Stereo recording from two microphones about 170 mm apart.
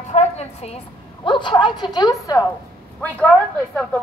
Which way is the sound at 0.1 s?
40° left (ahead or behind).